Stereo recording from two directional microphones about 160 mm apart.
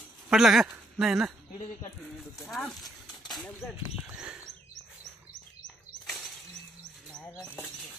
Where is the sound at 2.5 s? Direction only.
Centre (ahead or behind).